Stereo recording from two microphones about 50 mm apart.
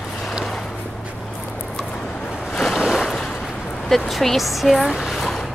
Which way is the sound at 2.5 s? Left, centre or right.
Centre.